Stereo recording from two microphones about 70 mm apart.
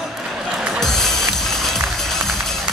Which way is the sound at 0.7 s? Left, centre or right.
Centre.